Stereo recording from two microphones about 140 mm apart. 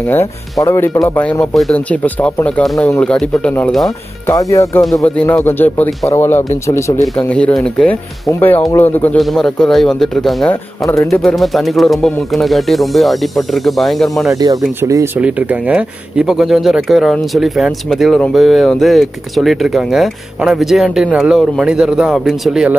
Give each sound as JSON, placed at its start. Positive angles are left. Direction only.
{"t": 0.1, "sound": "speech", "side_deg": 20}
{"t": 1.4, "sound": "speech", "side_deg": 5}
{"t": 4.3, "sound": "speech", "side_deg": 25}
{"t": 4.8, "sound": "speech", "side_deg": 5}
{"t": 7.2, "sound": "speech", "side_deg": 10}
{"t": 9.2, "sound": "speech", "side_deg": 0}
{"t": 14.8, "sound": "speech", "side_deg": -25}
{"t": 15.1, "sound": "speech", "side_deg": -10}